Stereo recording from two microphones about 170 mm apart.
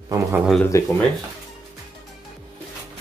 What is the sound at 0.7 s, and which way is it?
Speech, 20° left (ahead or behind).